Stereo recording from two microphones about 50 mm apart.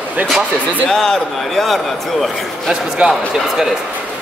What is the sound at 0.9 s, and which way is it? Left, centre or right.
A man's voice, centre.